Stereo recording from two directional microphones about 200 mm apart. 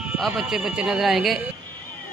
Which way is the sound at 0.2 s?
Centre (ahead or behind).